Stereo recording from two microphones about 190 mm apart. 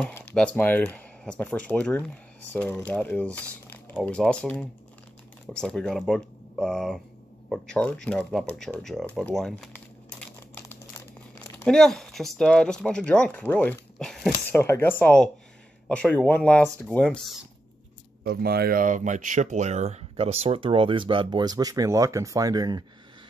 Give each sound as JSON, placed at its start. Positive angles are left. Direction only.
{"t": 0.0, "sound": "speech", "side_deg": 5}
{"t": 8.8, "sound": "crumpling", "side_deg": 0}
{"t": 11.3, "sound": "speech", "side_deg": 5}
{"t": 14.6, "sound": "speech", "side_deg": 10}
{"t": 18.2, "sound": "speech", "side_deg": -55}